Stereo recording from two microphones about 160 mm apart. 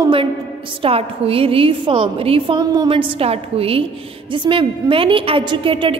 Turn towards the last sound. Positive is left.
turn(degrees=-35)  # may be behind; listen again after turning